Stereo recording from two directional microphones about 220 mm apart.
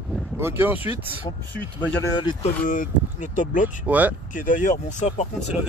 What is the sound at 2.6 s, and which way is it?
Speech, 40° left (ahead or behind).